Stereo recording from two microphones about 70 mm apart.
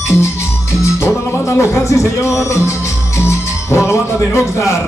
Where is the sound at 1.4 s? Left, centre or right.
Left.